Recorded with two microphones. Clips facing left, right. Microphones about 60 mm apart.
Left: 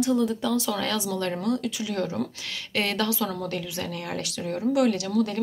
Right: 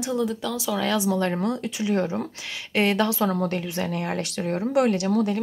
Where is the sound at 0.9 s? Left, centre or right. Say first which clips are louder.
Right 4 dB; right.